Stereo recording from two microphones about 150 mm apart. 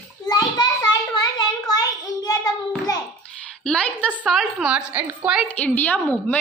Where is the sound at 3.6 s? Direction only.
5° left (ahead or behind).